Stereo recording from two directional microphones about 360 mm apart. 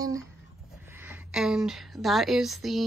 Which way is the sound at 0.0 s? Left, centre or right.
Centre.